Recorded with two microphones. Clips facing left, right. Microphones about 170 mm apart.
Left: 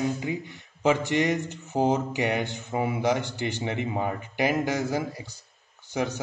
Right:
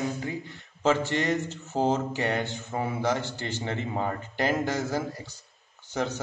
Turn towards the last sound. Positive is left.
turn(degrees=15)  # may be behind; listen again after turning